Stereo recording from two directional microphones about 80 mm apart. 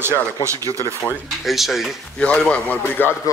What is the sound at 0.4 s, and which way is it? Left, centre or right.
Speech, right.